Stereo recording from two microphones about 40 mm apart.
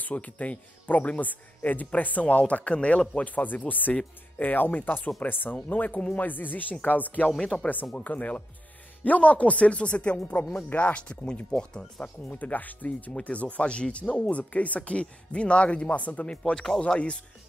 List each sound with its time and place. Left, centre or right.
0.0 s speech: left
5.7 s speech: left
12.3 s speech: left
14.3 s speech: left